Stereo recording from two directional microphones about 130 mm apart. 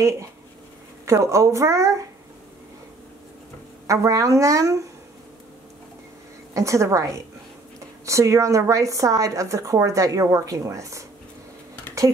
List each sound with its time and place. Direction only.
1.0 s speech: 25° right (ahead or behind)
3.8 s speech: 25° right (ahead or behind)
6.5 s speech: 25° right (ahead or behind)